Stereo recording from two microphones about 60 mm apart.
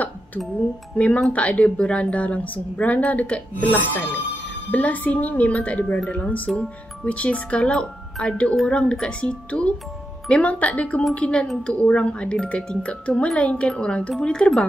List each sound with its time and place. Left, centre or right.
0.9 s a woman's voice: left